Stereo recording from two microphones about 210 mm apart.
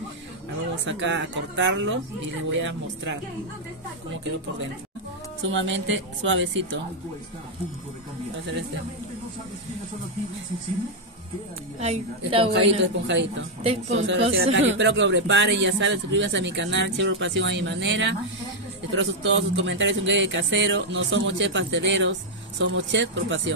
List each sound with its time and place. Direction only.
0.8 s a man's voice: 60° right (ahead or behind)
5.5 s a man's voice: 65° right (ahead or behind)
11.8 s a woman's voice: 30° right (ahead or behind)
12.8 s a man's voice: 60° right (ahead or behind)
13.6 s a woman's voice: 30° right (ahead or behind)
13.9 s a man's voice: 60° right (ahead or behind)
14.3 s a man's voice: 70° right (ahead or behind)